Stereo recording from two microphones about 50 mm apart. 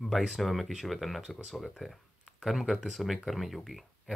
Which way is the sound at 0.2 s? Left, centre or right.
Centre.